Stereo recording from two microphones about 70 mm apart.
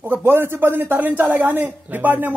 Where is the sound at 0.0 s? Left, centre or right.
Right.